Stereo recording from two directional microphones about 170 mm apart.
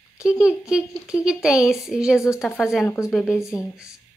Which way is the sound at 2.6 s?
Centre (ahead or behind).